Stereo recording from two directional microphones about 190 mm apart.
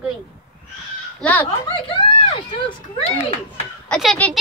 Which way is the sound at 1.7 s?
30° left (ahead or behind).